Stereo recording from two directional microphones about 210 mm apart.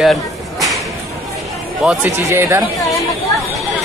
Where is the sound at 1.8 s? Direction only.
5° right (ahead or behind).